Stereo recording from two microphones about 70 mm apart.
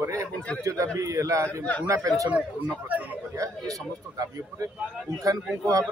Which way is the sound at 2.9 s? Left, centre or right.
Right.